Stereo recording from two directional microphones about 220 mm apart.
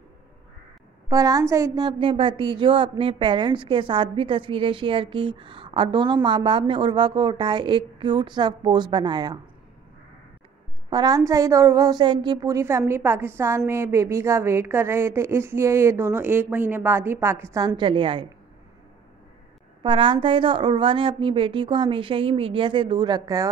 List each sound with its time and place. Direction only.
1.0 s a woman's voice: 15° right (ahead or behind)
10.9 s a woman's voice: 20° right (ahead or behind)
19.8 s a woman's voice: 25° right (ahead or behind)